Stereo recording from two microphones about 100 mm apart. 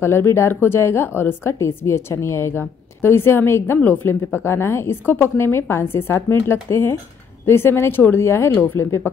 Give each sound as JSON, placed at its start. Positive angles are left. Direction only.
{"t": 0.0, "sound": "a woman's voice", "side_deg": 25}